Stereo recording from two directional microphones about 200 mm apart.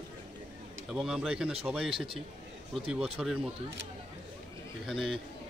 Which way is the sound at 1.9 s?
25° right (ahead or behind).